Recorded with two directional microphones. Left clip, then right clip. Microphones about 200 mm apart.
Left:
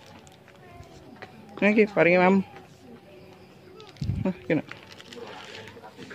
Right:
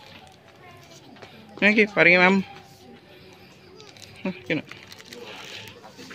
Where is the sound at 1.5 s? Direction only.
5° left (ahead or behind).